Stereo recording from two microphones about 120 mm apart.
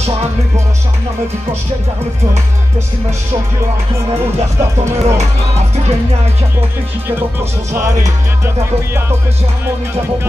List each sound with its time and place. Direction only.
5.0 s speech: 65° right (ahead or behind)